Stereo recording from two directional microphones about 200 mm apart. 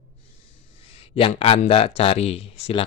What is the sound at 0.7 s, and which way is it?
A man's voice, 30° left (ahead or behind).